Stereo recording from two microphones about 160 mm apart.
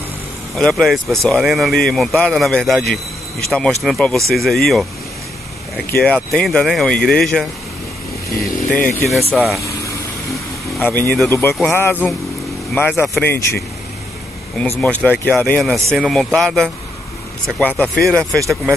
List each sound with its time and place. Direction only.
0.6 s speech: centre (ahead or behind)
5.9 s speech: 5° left (ahead or behind)
8.6 s speech: 10° left (ahead or behind)
9.3 s speech: centre (ahead or behind)
10.8 s speech: 10° left (ahead or behind)
14.7 s speech: 10° left (ahead or behind)